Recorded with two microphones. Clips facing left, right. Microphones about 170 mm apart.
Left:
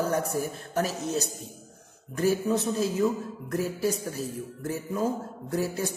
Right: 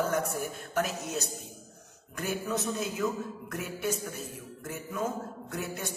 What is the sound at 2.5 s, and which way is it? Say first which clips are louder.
A man's voice: left 6 dB; 30° left (ahead or behind).